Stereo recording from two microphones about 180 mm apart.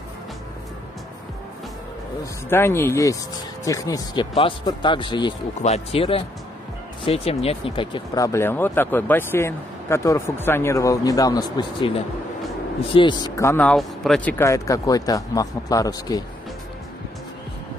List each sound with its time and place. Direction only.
2.5 s a man's voice: 15° left (ahead or behind)
12.9 s speech: 25° left (ahead or behind); by 14.3 s centre (ahead or behind)
14.4 s a man's voice: 15° left (ahead or behind)